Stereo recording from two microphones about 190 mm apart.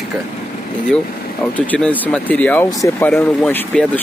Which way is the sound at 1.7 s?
5° left (ahead or behind).